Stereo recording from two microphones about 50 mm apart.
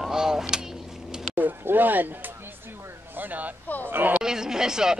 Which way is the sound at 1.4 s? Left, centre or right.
Right.